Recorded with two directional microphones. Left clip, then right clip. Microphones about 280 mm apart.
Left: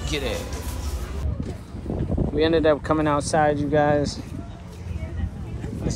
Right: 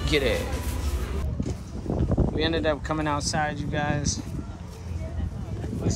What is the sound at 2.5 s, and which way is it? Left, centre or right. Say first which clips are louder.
Speech: left 7 dB; centre.